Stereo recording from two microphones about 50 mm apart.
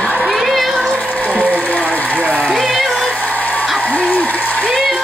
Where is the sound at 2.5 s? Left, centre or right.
Centre.